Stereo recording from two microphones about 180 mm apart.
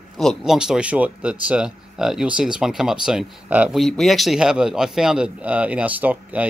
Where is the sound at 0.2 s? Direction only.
Centre (ahead or behind).